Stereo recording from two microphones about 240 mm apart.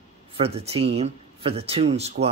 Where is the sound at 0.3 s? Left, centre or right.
Right.